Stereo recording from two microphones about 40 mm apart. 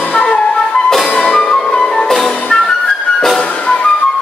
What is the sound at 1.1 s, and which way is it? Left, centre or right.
Music, centre.